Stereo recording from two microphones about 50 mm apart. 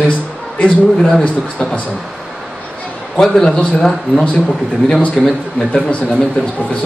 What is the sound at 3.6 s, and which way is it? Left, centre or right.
Speech, left.